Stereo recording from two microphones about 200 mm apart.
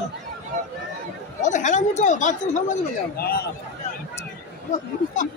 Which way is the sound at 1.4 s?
40° left (ahead or behind).